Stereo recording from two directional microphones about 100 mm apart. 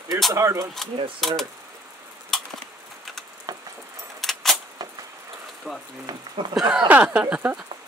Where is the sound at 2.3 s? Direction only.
5° left (ahead or behind).